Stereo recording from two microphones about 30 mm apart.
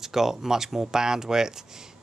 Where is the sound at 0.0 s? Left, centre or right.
Centre.